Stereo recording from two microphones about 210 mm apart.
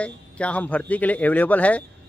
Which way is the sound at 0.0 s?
5° left (ahead or behind).